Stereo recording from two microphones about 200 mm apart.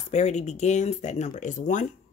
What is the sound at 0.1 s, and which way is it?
Speech, 35° left (ahead or behind).